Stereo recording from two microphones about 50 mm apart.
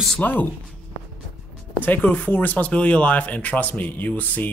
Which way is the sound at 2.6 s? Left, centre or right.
Left.